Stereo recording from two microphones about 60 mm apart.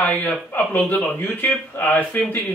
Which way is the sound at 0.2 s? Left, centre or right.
Left.